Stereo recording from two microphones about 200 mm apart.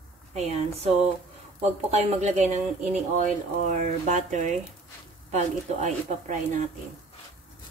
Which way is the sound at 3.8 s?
40° right (ahead or behind).